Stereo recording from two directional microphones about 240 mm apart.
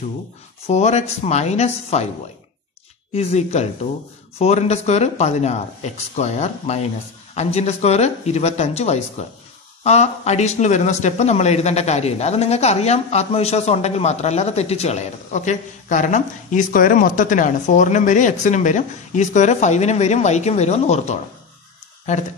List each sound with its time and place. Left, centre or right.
0.7 s speech: left
3.1 s speech: left